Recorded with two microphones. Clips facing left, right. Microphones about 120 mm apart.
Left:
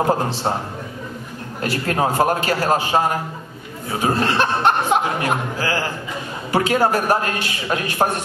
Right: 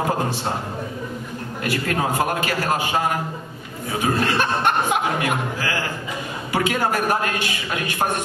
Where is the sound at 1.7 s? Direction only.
40° left (ahead or behind).